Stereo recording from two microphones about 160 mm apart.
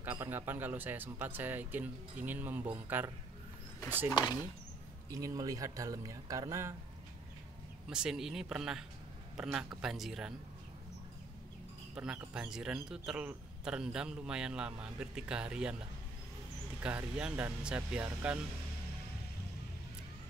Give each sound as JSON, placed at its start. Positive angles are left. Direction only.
{"t": 0.0, "sound": "speech", "side_deg": -15}
{"t": 5.1, "sound": "speech", "side_deg": -20}
{"t": 7.9, "sound": "a man's voice", "side_deg": -5}
{"t": 11.9, "sound": "a man's voice", "side_deg": -5}
{"t": 16.8, "sound": "speech", "side_deg": -10}